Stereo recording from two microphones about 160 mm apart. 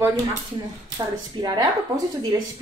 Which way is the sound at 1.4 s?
25° right (ahead or behind).